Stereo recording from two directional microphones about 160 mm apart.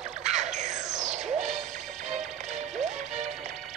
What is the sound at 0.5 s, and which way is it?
Music, 50° right (ahead or behind).